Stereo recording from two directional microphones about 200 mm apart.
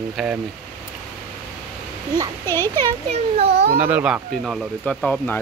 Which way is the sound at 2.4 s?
10° left (ahead or behind).